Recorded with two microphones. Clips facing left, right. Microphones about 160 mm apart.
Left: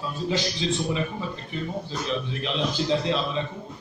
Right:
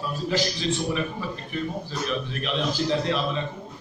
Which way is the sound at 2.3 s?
20° left (ahead or behind).